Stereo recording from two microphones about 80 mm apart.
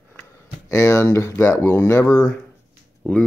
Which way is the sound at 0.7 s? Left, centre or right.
Left.